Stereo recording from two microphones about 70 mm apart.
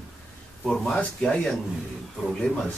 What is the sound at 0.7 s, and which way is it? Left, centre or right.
Speech, centre.